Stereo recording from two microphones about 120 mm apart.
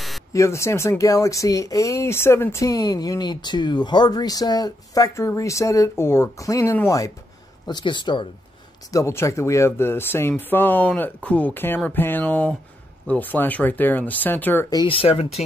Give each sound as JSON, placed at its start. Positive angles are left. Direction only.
{"t": 0.3, "sound": "speech", "side_deg": 25}
{"t": 7.6, "sound": "speech", "side_deg": 40}
{"t": 8.9, "sound": "speech", "side_deg": 25}
{"t": 14.9, "sound": "speech", "side_deg": 55}